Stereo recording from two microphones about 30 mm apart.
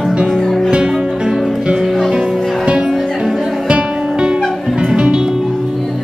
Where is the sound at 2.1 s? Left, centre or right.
Right.